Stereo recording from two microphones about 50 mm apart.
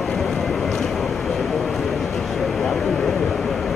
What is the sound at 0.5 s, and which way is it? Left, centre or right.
Vehicle, centre.